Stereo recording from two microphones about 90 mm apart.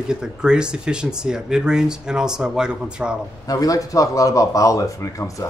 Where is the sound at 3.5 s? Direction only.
40° left (ahead or behind).